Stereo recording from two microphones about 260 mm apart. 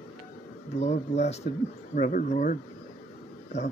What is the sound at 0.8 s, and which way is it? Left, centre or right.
Speech, left.